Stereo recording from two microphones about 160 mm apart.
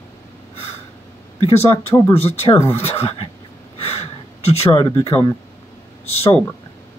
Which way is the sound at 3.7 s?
40° left (ahead or behind).